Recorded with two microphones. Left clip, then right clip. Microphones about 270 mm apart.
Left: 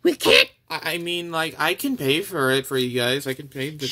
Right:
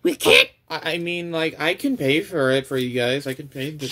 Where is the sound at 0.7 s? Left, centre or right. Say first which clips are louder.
Right 1 dB; left.